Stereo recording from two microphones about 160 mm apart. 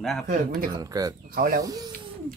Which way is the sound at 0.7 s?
25° right (ahead or behind).